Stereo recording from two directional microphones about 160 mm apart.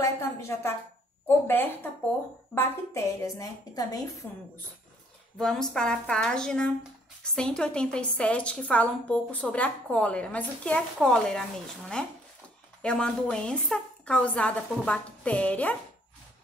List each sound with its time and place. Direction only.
0.0 s a sound: 15° left (ahead or behind)
1.2 s a woman's voice: 15° left (ahead or behind)
5.4 s a woman's voice: 5° left (ahead or behind)